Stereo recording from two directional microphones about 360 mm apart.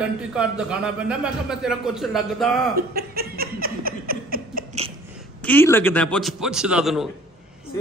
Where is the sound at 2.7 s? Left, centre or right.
Right.